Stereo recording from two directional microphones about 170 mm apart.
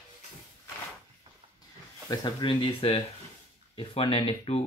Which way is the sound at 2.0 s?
25° left (ahead or behind).